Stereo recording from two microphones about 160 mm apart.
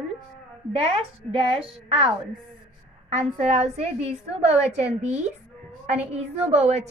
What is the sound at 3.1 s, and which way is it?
A woman's voice, 40° right (ahead or behind).